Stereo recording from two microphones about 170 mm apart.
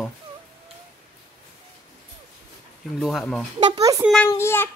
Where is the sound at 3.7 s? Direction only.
20° right (ahead or behind).